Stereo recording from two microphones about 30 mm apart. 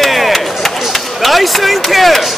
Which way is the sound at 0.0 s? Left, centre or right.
Centre.